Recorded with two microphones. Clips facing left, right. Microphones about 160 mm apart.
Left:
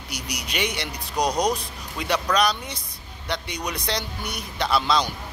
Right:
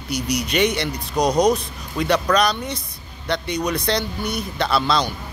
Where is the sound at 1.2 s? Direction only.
10° right (ahead or behind).